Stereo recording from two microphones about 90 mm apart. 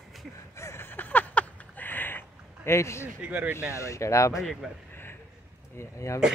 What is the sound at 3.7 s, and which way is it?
Speech, 35° left (ahead or behind).